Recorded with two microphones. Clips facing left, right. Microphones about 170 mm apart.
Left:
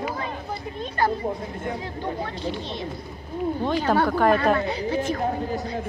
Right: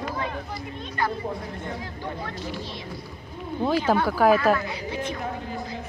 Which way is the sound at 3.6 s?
5° right (ahead or behind).